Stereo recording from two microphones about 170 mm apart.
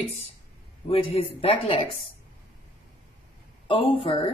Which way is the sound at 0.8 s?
35° left (ahead or behind).